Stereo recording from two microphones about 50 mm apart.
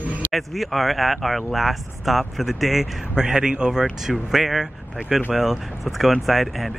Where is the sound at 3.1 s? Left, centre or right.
Centre.